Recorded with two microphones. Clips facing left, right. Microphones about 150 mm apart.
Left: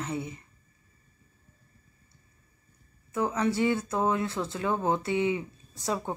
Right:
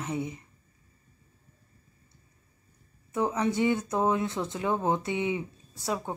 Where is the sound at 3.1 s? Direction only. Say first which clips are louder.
Even; 20° right (ahead or behind).